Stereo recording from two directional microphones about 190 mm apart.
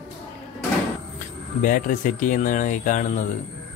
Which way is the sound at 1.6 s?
45° left (ahead or behind).